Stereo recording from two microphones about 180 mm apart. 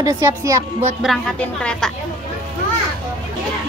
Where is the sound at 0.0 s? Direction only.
15° right (ahead or behind).